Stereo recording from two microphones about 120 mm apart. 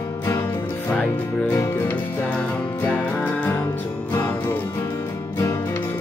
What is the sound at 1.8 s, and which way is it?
Music, 10° left (ahead or behind).